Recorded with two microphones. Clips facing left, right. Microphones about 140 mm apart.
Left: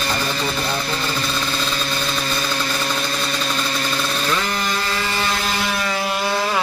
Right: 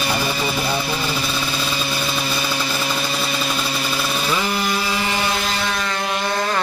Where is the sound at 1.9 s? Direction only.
10° right (ahead or behind).